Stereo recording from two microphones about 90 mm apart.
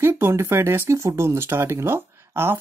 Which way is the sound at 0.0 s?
25° right (ahead or behind).